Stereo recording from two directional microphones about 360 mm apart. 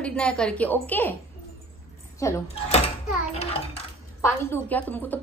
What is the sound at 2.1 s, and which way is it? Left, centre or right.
A woman's voice, centre.